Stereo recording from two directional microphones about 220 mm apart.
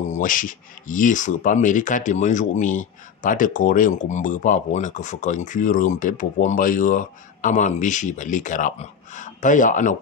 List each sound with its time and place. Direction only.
0.1 s speech: 40° left (ahead or behind)